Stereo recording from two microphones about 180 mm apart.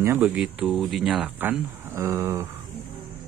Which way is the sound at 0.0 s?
10° right (ahead or behind).